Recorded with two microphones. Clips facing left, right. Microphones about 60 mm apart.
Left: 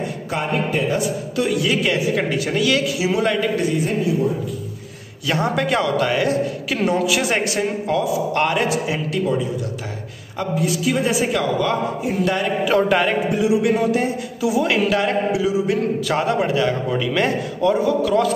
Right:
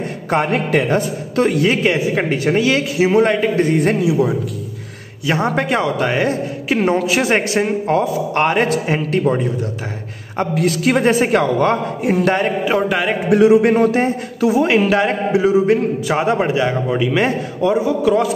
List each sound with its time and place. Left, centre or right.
0.3 s a man's voice: right
0.9 s a man's voice: right
3.6 s a man's voice: right
5.2 s a man's voice: right
10.5 s a man's voice: right
12.8 s a man's voice: centre
13.3 s a man's voice: right
16.1 s a man's voice: right